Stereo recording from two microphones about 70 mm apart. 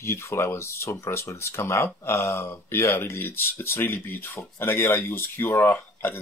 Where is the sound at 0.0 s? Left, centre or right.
Left.